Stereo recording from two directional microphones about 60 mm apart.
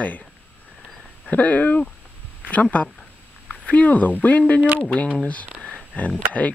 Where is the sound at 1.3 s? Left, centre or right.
Left.